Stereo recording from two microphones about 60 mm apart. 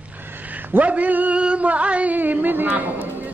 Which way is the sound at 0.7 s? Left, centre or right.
Right.